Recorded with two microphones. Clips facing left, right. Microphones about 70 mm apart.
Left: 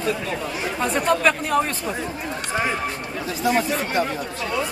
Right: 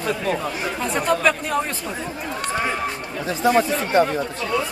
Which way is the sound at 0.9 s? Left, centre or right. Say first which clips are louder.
Even; centre.